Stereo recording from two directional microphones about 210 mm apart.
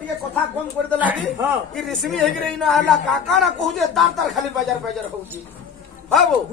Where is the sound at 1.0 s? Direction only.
10° right (ahead or behind).